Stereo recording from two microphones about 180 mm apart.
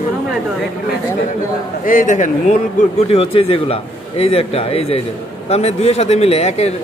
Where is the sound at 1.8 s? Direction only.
50° left (ahead or behind).